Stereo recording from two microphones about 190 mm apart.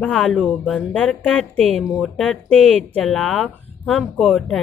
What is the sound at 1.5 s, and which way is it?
Speech, 35° right (ahead or behind).